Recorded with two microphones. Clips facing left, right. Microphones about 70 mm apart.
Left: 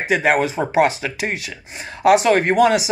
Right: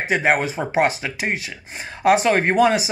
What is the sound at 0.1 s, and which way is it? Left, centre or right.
Speech, right.